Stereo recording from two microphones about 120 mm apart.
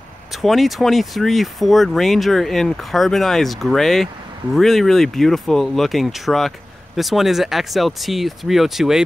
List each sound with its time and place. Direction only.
0.3 s speech: centre (ahead or behind)